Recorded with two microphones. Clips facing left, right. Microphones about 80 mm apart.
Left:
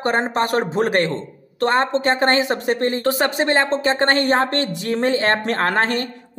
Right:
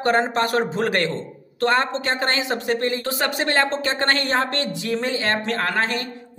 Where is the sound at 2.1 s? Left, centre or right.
Left.